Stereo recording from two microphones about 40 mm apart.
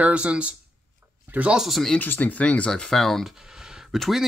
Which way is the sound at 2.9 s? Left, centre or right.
Centre.